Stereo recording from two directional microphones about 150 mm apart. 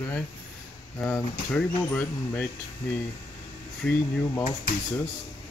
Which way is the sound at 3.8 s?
5° left (ahead or behind).